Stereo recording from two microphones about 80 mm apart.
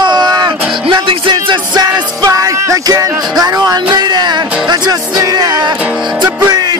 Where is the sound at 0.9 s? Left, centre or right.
Right.